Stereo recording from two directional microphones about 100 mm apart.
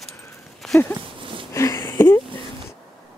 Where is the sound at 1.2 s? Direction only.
60° right (ahead or behind).